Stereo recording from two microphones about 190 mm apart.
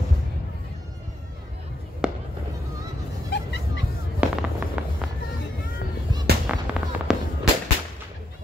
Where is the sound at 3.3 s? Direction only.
65° left (ahead or behind).